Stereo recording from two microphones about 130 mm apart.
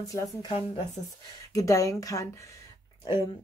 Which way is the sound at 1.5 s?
25° left (ahead or behind).